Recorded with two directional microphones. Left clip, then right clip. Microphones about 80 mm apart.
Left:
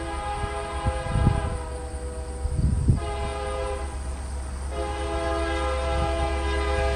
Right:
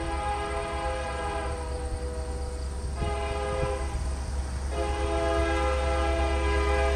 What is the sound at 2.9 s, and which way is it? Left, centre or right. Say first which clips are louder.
Train: right 3 dB; centre.